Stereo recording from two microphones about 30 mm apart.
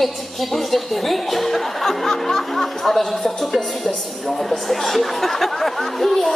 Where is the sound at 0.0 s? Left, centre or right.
Centre.